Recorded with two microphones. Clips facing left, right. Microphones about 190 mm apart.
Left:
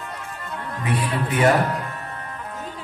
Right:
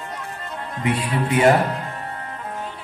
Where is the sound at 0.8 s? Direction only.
25° right (ahead or behind).